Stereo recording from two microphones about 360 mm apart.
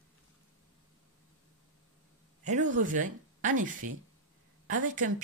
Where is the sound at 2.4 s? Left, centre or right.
Right.